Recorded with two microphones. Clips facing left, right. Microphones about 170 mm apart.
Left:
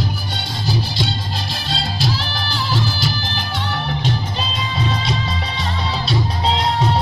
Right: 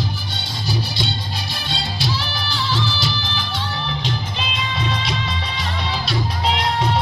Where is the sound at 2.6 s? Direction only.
45° left (ahead or behind).